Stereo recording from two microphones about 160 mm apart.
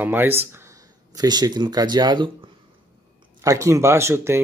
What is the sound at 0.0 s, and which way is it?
Speech, 15° right (ahead or behind).